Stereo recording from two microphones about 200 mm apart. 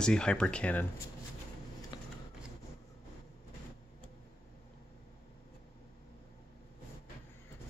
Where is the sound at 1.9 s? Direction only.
20° left (ahead or behind).